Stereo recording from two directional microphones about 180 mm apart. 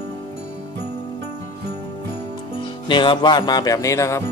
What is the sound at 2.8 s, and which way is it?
Speech, 25° left (ahead or behind).